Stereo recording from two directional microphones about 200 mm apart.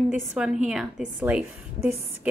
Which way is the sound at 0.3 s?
5° right (ahead or behind).